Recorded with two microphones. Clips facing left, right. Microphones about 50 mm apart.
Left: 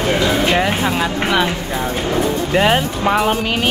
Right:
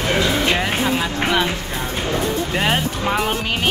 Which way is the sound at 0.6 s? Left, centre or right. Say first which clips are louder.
Left 3 dB; centre.